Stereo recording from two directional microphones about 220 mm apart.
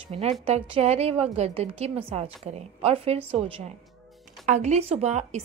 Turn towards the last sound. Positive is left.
turn(degrees=-30)  # may be behind; listen again after turning